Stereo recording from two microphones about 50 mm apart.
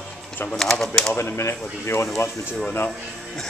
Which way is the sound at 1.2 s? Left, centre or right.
Left.